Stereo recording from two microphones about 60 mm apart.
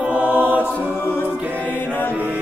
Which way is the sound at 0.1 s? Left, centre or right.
Right.